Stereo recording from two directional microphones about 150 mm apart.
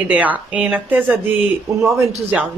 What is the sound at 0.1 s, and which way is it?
Speech, 10° right (ahead or behind).